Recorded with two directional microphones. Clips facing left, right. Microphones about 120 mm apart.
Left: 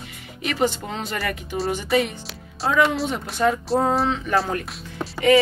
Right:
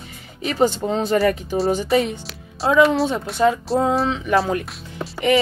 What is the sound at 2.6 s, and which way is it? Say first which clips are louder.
Speech: right 5 dB; 30° right (ahead or behind).